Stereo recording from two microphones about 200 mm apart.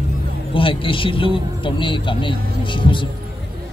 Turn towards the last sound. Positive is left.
turn(degrees=25)  # may be behind; listen again after turning